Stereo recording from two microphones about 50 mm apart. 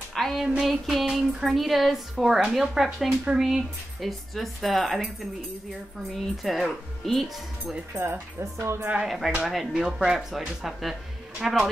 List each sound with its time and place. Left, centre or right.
0.1 s a sound: centre
1.1 s a woman's voice: centre
6.3 s a woman's voice: centre
7.9 s speech: right
9.0 s a woman's voice: centre